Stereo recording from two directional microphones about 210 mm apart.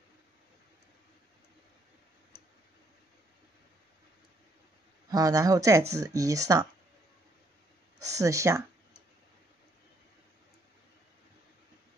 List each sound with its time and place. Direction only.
5.1 s speech: 15° right (ahead or behind)
8.0 s speech: 15° right (ahead or behind)